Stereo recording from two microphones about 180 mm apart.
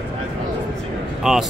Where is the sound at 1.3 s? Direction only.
5° right (ahead or behind).